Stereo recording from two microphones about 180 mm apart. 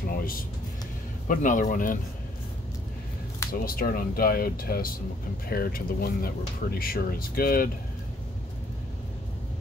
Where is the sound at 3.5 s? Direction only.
55° left (ahead or behind).